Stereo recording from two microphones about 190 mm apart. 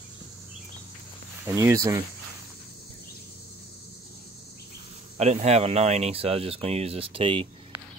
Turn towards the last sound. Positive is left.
turn(degrees=-30)  # may be behind; listen again after turning